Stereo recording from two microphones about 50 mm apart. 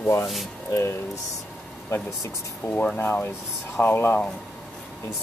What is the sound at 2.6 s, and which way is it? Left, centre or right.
Speech, left.